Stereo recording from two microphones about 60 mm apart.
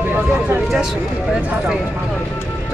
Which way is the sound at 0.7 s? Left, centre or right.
Centre.